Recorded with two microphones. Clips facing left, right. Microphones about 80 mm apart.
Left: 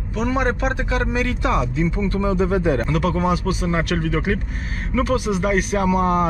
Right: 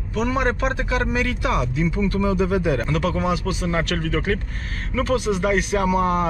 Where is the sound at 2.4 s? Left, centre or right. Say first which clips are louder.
Left 3 dB; left.